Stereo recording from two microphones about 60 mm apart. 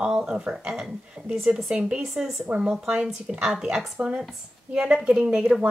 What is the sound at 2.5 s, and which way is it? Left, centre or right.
Speech, right.